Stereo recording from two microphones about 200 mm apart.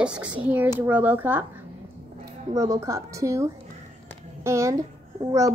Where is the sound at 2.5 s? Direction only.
15° right (ahead or behind).